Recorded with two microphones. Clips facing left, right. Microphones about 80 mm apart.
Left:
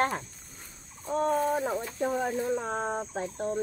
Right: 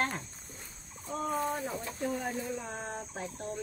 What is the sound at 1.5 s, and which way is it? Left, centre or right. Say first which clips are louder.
Speech: left 7 dB; left.